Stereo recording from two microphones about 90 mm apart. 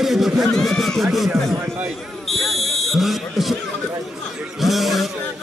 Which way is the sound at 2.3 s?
Centre (ahead or behind).